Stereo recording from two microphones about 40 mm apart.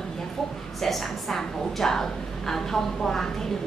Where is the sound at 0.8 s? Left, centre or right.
Centre.